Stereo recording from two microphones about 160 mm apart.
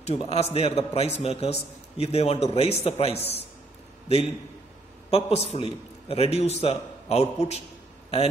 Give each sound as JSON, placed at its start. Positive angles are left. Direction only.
{"t": 0.0, "sound": "a man's voice", "side_deg": 40}
{"t": 5.1, "sound": "a man's voice", "side_deg": 40}